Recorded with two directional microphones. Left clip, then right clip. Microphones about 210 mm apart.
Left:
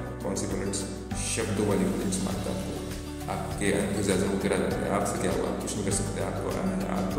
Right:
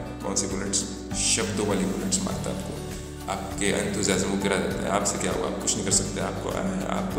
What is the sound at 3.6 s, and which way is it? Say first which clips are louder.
A man's voice: right 2 dB; centre (ahead or behind).